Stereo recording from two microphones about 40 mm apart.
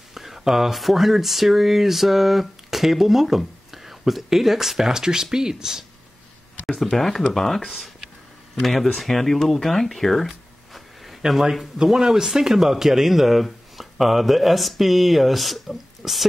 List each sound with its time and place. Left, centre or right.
0.1 s speech: centre
6.8 s speech: centre
11.8 s speech: centre